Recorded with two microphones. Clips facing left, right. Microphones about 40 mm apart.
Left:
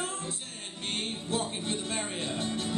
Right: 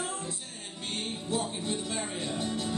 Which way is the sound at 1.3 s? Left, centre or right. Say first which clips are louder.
Right 1 dB; left.